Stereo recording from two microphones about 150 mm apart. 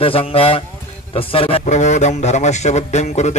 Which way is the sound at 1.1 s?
35° left (ahead or behind).